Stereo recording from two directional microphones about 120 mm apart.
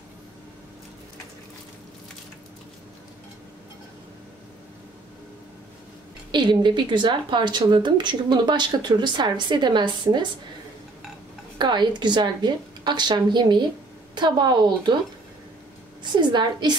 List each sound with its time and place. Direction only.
6.3 s a woman's voice: 40° right (ahead or behind)
11.5 s a woman's voice: 40° right (ahead or behind)
16.0 s a woman's voice: 40° right (ahead or behind)